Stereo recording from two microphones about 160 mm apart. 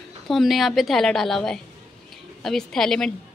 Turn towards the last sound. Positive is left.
turn(degrees=5)  # may be behind; listen again after turning